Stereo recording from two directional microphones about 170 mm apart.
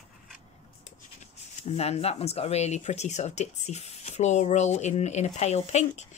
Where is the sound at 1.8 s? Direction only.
35° left (ahead or behind).